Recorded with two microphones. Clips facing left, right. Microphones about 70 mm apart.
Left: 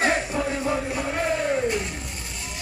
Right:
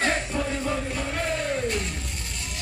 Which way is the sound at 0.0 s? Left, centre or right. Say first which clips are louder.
Left 3 dB; centre.